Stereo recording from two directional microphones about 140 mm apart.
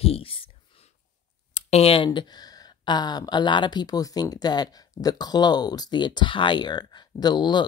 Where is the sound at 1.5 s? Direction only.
45° left (ahead or behind).